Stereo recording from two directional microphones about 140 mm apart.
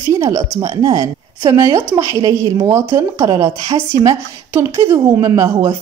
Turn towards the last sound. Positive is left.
turn(degrees=-20)  # may be behind; listen again after turning